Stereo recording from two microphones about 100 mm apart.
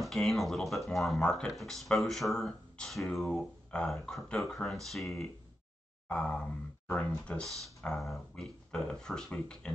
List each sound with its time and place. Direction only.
0.0 s speech: centre (ahead or behind)
6.0 s grunt: 10° left (ahead or behind)
6.9 s speech: 15° left (ahead or behind)